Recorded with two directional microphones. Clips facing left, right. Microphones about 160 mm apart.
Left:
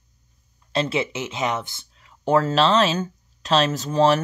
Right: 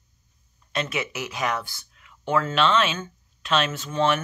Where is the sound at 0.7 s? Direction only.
30° left (ahead or behind).